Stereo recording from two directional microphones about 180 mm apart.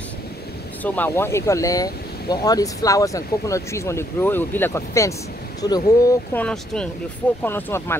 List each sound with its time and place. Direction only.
0.8 s speech: 10° left (ahead or behind)
6.3 s speech: 5° left (ahead or behind)